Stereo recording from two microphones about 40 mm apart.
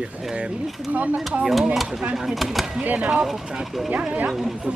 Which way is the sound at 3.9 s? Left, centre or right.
Right.